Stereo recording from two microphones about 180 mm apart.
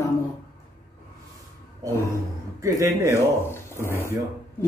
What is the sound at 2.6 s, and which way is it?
Speech, 15° right (ahead or behind).